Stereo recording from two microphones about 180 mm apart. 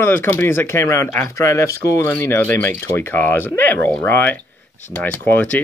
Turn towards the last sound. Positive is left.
turn(degrees=10)  # may be behind; listen again after turning